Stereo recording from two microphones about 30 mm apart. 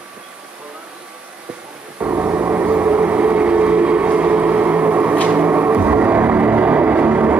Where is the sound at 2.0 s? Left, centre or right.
Right.